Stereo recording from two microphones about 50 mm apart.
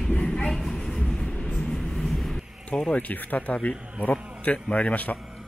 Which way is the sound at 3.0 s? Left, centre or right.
Left.